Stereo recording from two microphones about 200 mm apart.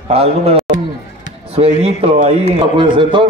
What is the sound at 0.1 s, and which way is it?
Speech, 30° right (ahead or behind).